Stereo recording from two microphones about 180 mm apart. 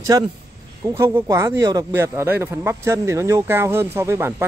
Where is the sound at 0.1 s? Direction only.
25° right (ahead or behind).